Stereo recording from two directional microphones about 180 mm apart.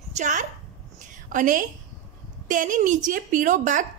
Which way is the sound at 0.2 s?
45° right (ahead or behind).